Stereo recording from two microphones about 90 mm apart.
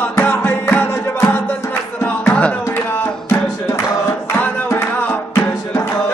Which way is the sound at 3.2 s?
25° left (ahead or behind).